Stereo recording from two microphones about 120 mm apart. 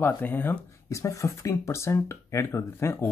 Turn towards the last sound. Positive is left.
turn(degrees=20)  # may be behind; listen again after turning